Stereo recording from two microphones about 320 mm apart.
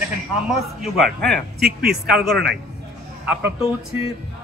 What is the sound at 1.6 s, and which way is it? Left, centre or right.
Speech, right.